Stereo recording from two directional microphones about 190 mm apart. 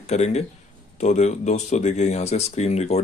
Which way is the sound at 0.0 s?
35° left (ahead or behind).